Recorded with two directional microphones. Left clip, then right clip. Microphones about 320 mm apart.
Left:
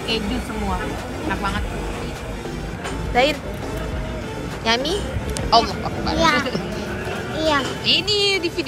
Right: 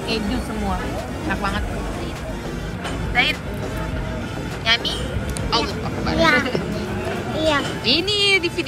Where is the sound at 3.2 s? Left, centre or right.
Centre.